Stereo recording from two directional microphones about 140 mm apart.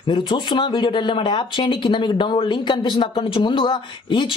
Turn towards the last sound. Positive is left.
turn(degrees=35)  # may be behind; listen again after turning